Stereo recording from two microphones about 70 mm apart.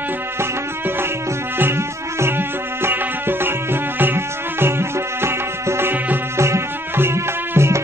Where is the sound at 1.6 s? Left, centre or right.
Right.